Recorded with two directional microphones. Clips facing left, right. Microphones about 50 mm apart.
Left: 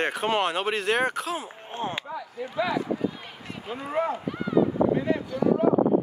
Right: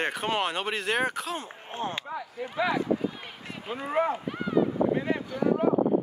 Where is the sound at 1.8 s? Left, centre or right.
Left.